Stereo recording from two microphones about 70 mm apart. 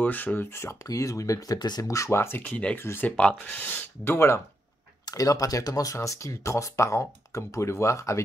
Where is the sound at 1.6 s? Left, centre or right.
Left.